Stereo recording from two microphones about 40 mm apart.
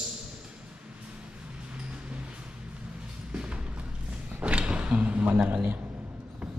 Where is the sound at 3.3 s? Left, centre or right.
Right.